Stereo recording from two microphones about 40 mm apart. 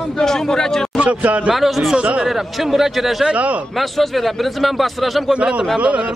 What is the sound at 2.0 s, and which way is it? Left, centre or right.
Speech, right.